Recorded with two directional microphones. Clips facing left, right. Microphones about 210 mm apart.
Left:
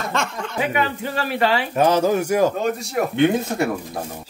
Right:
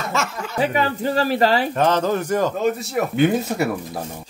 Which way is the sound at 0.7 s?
35° right (ahead or behind).